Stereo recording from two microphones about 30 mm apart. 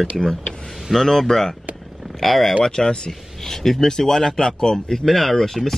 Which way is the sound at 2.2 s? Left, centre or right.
Centre.